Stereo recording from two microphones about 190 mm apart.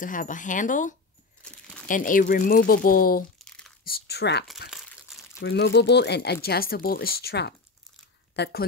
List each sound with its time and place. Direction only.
0.0 s speech: 45° left (ahead or behind)
1.4 s crumpling: 5° left (ahead or behind)
1.9 s speech: 45° left (ahead or behind)
3.3 s crumpling: centre (ahead or behind)
3.8 s speech: 55° left (ahead or behind)